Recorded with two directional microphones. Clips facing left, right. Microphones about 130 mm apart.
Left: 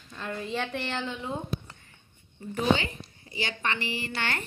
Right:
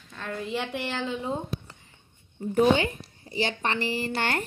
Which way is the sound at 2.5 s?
50° right (ahead or behind).